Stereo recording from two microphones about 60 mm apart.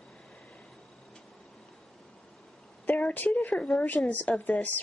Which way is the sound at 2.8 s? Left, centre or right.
Left.